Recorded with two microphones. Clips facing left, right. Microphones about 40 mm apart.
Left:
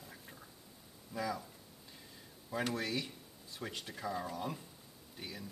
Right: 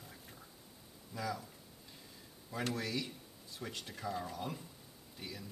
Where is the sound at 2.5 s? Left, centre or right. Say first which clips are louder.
Left 2 dB; centre.